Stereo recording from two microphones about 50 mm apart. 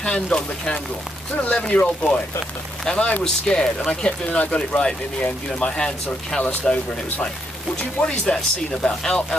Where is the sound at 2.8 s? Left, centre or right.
Centre.